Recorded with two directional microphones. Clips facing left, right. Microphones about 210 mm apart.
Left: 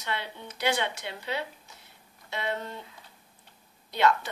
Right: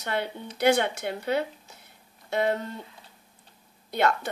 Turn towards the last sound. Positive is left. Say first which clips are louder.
# even
turn(degrees=-50)  # may be behind; listen again after turning